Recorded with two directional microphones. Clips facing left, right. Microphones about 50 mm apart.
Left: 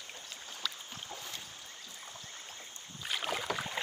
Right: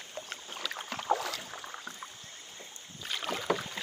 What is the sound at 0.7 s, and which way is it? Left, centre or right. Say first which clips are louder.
Boat: right 14 dB; right.